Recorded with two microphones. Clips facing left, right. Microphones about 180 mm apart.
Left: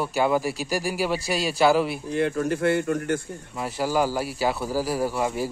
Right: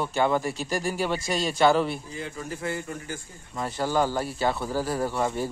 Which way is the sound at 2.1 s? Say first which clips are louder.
Left 11 dB; 70° left (ahead or behind).